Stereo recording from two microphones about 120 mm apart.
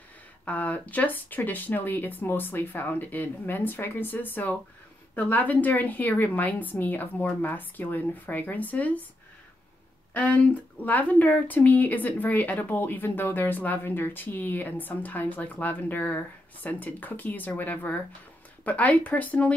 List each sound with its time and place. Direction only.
0.5 s speech: 15° left (ahead or behind)
10.1 s speech: 10° left (ahead or behind)